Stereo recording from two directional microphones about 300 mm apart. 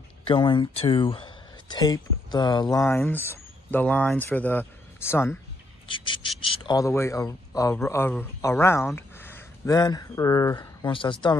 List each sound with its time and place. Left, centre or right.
0.2 s a man's voice: centre